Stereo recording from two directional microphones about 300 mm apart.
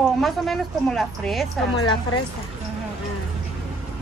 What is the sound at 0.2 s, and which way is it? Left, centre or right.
A woman's voice, centre.